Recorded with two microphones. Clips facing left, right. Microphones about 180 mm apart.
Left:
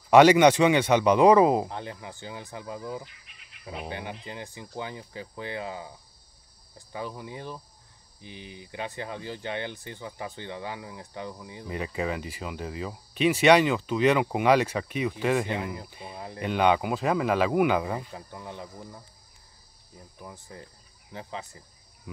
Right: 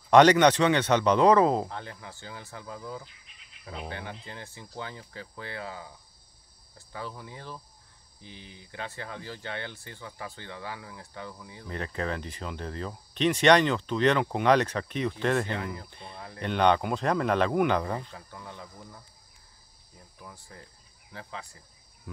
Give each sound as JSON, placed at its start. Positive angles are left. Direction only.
{"t": 0.1, "sound": "speech", "side_deg": 10}
{"t": 3.3, "sound": "cricket", "side_deg": 65}
{"t": 3.6, "sound": "speech", "side_deg": 10}
{"t": 18.1, "sound": "speech", "side_deg": 20}
{"t": 20.2, "sound": "speech", "side_deg": 20}
{"t": 22.1, "sound": "cricket", "side_deg": 10}